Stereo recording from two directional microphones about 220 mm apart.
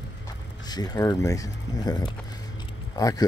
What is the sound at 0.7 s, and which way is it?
Speech, 15° left (ahead or behind).